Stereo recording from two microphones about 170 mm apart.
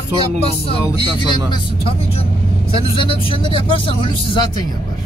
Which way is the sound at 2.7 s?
30° left (ahead or behind).